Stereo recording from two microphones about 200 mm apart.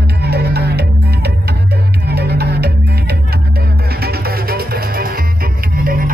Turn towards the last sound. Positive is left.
turn(degrees=-45)  # may be behind; listen again after turning